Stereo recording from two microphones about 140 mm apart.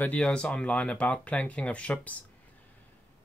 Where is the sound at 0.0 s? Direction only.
10° left (ahead or behind).